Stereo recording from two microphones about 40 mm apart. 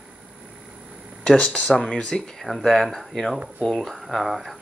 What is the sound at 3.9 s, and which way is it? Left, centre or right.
Speech, centre.